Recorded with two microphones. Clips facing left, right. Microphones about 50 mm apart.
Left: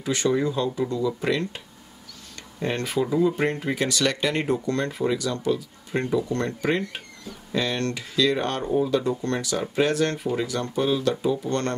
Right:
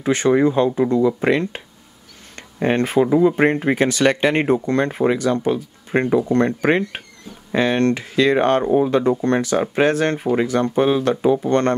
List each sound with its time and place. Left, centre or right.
0.0 s speech: right